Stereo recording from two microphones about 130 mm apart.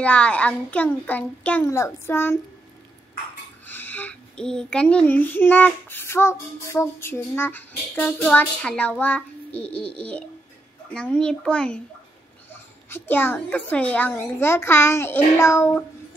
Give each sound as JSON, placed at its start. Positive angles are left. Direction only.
{"t": 0.0, "sound": "a child's voice", "side_deg": 10}
{"t": 3.6, "sound": "a child's voice", "side_deg": 15}